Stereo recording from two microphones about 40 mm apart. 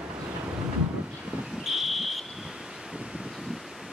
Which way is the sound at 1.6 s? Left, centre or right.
Centre.